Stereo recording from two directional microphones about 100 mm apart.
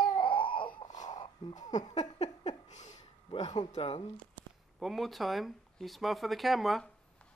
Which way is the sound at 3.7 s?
90° left.